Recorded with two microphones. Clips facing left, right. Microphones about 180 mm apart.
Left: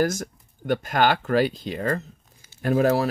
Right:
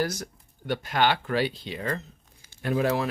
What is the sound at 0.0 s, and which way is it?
Speech, 45° left (ahead or behind).